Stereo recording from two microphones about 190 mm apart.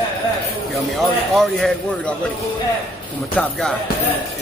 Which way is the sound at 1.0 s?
Centre (ahead or behind).